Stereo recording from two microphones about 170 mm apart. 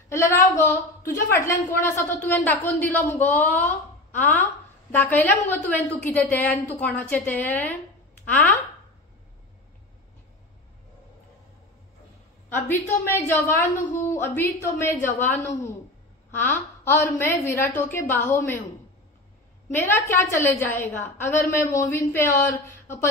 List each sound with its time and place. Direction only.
0.1 s a woman's voice: 15° left (ahead or behind)
12.4 s a woman's voice: 15° left (ahead or behind)
15.0 s a woman's voice: 45° left (ahead or behind)
16.3 s a woman's voice: 10° left (ahead or behind)
19.7 s a woman's voice: 15° left (ahead or behind)